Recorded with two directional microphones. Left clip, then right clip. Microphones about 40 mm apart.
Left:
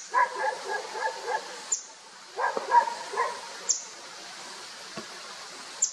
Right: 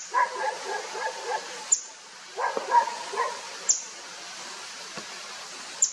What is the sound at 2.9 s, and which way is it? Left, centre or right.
Dog, right.